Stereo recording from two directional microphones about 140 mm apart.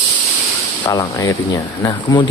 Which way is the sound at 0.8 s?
25° left (ahead or behind).